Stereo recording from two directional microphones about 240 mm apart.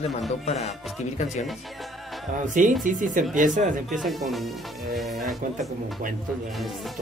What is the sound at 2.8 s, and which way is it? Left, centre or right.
Speech, right.